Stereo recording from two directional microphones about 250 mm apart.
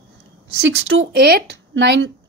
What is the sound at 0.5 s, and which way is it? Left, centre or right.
Speech, right.